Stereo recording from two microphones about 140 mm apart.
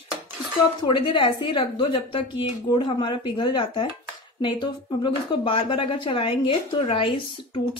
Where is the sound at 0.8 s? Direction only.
35° left (ahead or behind).